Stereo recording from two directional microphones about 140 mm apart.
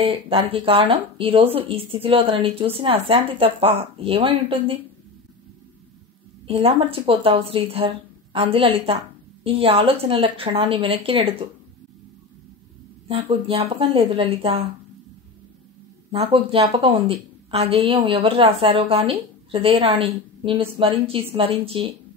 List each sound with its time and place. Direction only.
0.0 s a woman's voice: 40° right (ahead or behind)
6.4 s a woman's voice: 45° right (ahead or behind)
13.1 s a woman's voice: 45° right (ahead or behind)
16.1 s a woman's voice: 45° right (ahead or behind)